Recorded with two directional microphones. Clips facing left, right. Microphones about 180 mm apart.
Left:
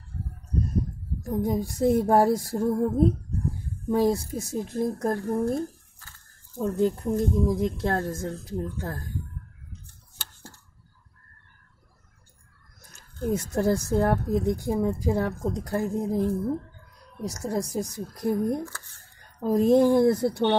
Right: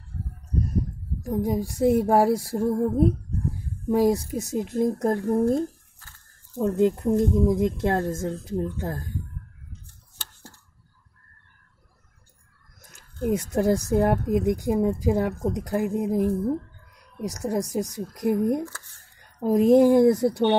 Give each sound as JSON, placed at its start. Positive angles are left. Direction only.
{"t": 0.2, "sound": "a sound", "side_deg": 20}
{"t": 1.2, "sound": "a woman's voice", "side_deg": -10}
{"t": 13.2, "sound": "a woman's voice", "side_deg": -15}